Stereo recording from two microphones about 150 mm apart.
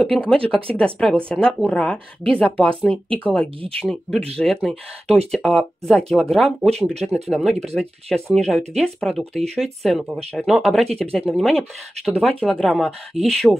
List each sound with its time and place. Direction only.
0.0 s speech: 5° left (ahead or behind)